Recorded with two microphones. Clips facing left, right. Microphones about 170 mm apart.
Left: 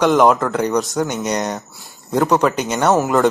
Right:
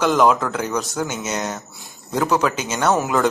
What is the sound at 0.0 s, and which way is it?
Speech, centre (ahead or behind).